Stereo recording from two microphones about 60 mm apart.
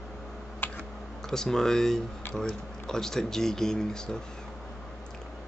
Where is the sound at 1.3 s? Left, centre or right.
Centre.